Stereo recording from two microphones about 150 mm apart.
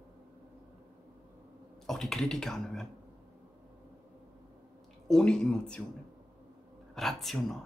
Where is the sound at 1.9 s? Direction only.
5° left (ahead or behind).